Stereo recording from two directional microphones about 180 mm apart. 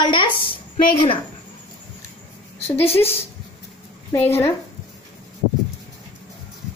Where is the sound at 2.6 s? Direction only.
35° left (ahead or behind).